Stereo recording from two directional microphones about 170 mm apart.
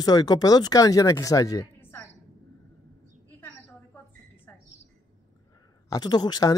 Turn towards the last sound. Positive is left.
turn(degrees=25)  # may be behind; listen again after turning